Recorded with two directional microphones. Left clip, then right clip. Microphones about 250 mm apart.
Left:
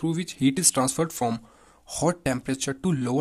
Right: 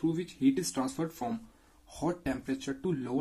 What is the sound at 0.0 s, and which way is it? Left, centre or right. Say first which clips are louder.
Speech: left 4 dB; left.